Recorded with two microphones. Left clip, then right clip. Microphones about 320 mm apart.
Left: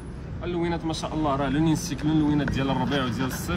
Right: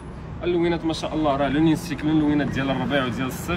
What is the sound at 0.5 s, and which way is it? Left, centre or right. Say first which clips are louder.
Speech: right 6 dB; left.